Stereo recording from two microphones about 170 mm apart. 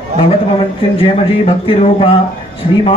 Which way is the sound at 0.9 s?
35° left (ahead or behind).